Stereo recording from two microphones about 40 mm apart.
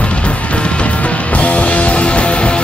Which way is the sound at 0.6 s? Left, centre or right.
Left.